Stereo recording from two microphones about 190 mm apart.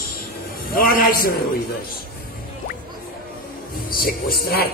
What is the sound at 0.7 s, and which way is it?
Speech, 50° left (ahead or behind).